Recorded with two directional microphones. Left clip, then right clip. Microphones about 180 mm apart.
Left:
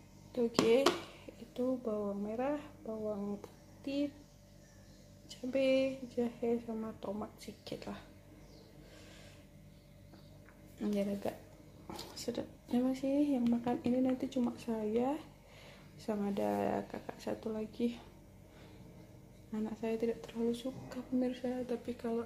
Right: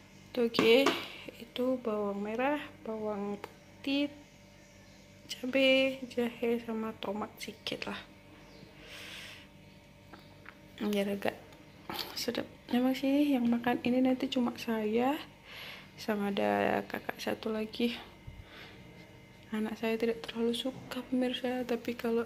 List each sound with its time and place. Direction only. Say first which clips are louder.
0.3 s speech: right 4 dB; 5° right (ahead or behind)
5.3 s a woman's voice: right 5 dB; centre (ahead or behind)
7.3 s a woman's voice: right 7 dB; centre (ahead or behind)
10.8 s a woman's voice: right 4 dB; 5° right (ahead or behind)
19.5 s a woman's voice: right 4 dB; 5° right (ahead or behind)
21.6 s speech: right 5 dB; 20° right (ahead or behind)